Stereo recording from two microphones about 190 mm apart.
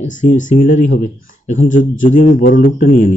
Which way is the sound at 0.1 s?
40° left (ahead or behind).